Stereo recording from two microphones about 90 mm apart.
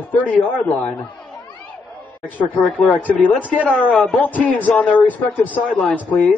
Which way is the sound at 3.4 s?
15° right (ahead or behind).